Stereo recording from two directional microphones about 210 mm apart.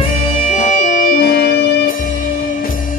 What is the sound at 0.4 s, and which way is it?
Music, 35° left (ahead or behind).